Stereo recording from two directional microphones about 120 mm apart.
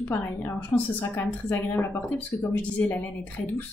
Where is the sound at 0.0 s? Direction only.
15° left (ahead or behind).